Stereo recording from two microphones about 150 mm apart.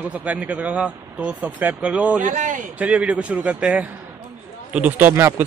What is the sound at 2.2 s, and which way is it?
Speech, 55° right (ahead or behind).